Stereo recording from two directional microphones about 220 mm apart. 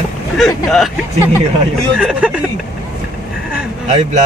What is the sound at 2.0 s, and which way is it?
Speech, 5° right (ahead or behind).